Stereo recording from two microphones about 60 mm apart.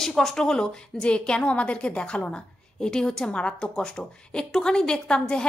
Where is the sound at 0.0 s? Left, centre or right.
Centre.